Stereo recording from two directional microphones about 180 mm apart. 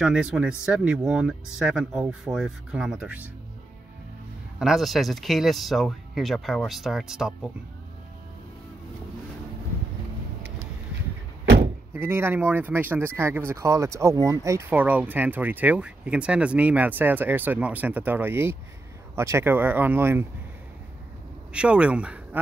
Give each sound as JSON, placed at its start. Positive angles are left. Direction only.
{"t": 0.0, "sound": "speech", "side_deg": -5}
{"t": 4.6, "sound": "speech", "side_deg": 0}
{"t": 11.4, "sound": "door", "side_deg": -70}
{"t": 11.9, "sound": "speech", "side_deg": -15}
{"t": 21.5, "sound": "speech", "side_deg": -5}